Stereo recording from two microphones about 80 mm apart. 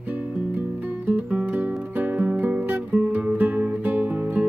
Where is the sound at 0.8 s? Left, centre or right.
Right.